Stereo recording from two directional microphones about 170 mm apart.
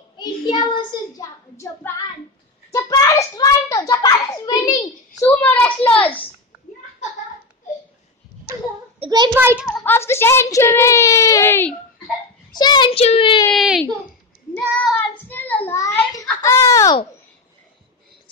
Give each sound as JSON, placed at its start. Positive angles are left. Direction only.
{"t": 0.2, "sound": "a child's voice", "side_deg": 25}
{"t": 2.7, "sound": "a child's voice", "side_deg": 20}
{"t": 5.2, "sound": "a woman's voice", "side_deg": 10}
{"t": 9.0, "sound": "a child's voice", "side_deg": -25}
{"t": 9.3, "sound": "a child's voice", "side_deg": -15}
{"t": 9.8, "sound": "a woman's voice", "side_deg": 15}
{"t": 12.5, "sound": "a child's voice", "side_deg": 25}
{"t": 13.5, "sound": "speech", "side_deg": 0}
{"t": 14.9, "sound": "child singing", "side_deg": 10}
{"t": 16.4, "sound": "a child's voice", "side_deg": 20}